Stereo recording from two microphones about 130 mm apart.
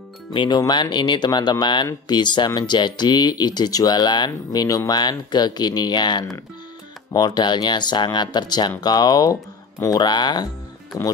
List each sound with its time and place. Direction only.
0.3 s speech: 35° left (ahead or behind)